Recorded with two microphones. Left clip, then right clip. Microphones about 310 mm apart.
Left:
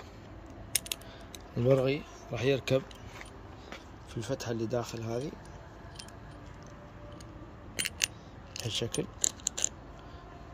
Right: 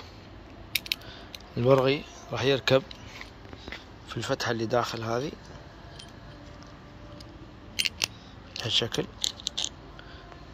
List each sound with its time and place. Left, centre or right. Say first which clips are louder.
1.5 s speech: right 5 dB; centre
4.1 s speech: right 7 dB; centre
7.7 s scissors: right 4 dB; left
8.6 s speech: right 7 dB; centre
9.2 s gears: right 4 dB; left